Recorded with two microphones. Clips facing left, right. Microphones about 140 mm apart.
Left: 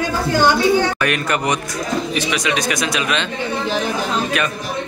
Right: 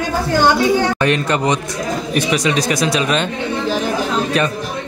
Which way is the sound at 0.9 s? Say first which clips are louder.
Right 3 dB; 25° right (ahead or behind).